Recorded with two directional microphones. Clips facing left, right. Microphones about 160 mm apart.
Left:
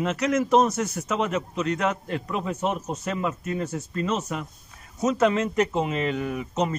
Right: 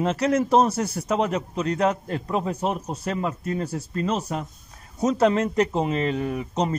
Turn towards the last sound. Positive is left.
turn(degrees=-35)  # may be behind; listen again after turning